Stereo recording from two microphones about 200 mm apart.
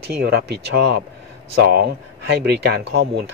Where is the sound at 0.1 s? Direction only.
55° right (ahead or behind).